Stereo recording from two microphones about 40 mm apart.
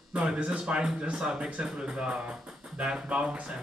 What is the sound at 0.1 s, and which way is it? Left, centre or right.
Speech, right.